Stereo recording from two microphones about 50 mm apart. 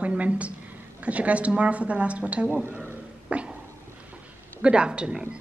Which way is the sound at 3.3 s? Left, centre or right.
Right.